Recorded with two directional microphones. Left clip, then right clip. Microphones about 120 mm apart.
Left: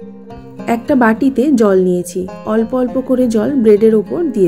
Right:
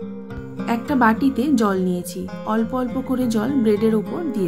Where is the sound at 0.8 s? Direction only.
15° left (ahead or behind).